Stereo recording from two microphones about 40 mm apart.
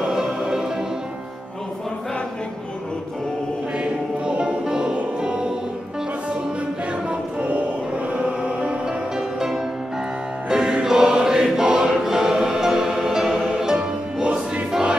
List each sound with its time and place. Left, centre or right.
0.0 s music: centre
4.3 s music: right
4.6 s music: centre
7.1 s music: right
8.1 s music: right
10.7 s choir: centre
13.6 s music: centre